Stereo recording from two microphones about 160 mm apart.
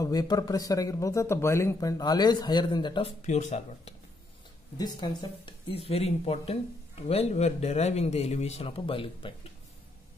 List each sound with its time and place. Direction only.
0.0 s speech: 25° left (ahead or behind)
3.3 s speech: 45° left (ahead or behind)
4.7 s speech: 25° left (ahead or behind)